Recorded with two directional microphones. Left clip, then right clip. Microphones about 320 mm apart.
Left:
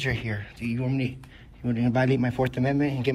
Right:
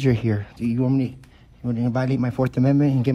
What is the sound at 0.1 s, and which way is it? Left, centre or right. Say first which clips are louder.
Speech: right 7 dB; right.